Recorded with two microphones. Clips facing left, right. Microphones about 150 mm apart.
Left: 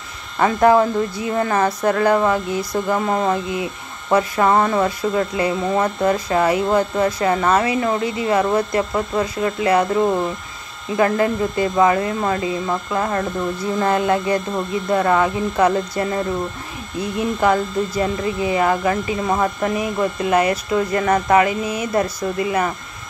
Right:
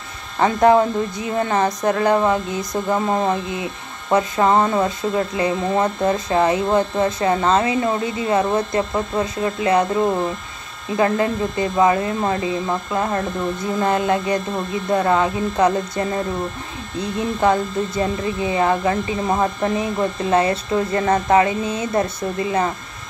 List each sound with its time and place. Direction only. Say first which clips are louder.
0.4 s speech: even; 20° right (ahead or behind)
11.0 s speech: left 1 dB; 25° right (ahead or behind)
17.4 s speech: even; 25° right (ahead or behind)